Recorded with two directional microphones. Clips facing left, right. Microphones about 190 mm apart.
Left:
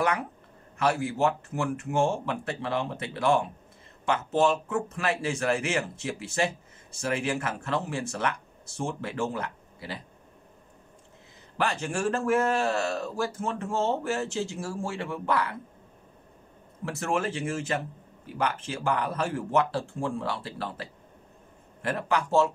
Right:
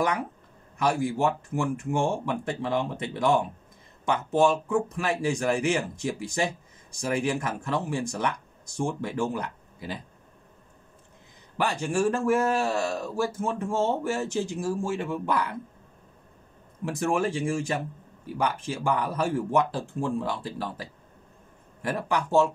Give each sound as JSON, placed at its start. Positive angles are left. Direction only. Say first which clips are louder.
{"t": 0.8, "sound": "speech", "louder": "right 1 dB", "side_deg": -15}
{"t": 11.6, "sound": "speech", "louder": "right 3 dB", "side_deg": -15}
{"t": 16.8, "sound": "speech", "louder": "right 3 dB", "side_deg": -15}
{"t": 21.8, "sound": "speech", "louder": "even", "side_deg": -15}